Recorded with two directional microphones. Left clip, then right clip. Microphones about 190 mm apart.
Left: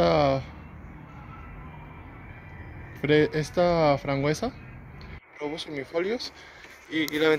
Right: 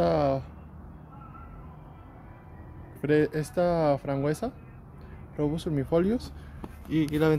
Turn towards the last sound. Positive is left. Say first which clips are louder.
# even
turn(degrees=-5)  # may be behind; listen again after turning